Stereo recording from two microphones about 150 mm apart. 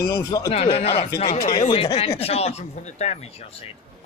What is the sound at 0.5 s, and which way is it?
Speech, 40° left (ahead or behind).